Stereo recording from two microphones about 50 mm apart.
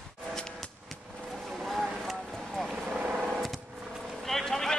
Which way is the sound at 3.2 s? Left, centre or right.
Centre.